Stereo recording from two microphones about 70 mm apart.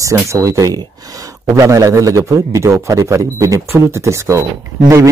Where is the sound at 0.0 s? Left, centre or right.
Right.